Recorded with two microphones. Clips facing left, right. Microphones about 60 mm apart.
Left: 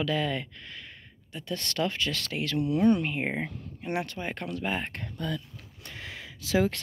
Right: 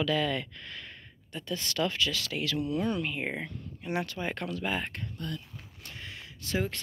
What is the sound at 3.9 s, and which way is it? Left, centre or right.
Speech, left.